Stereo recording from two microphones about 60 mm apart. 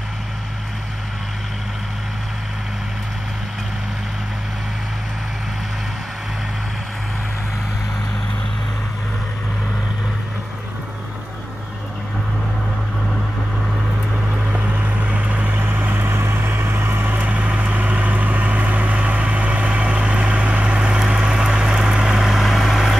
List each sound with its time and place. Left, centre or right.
14.5 s vehicle: right
17.2 s vehicle: right; by 22.9 s centre